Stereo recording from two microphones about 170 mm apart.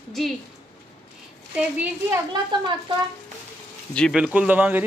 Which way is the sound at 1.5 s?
10° right (ahead or behind).